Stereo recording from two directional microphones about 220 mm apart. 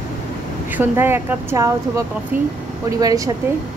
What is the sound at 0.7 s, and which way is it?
Speech, 10° right (ahead or behind).